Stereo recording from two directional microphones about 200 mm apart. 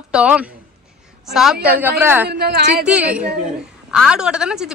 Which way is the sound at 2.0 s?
10° right (ahead or behind).